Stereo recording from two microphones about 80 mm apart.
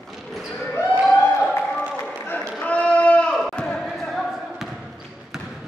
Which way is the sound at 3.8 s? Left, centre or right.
Centre.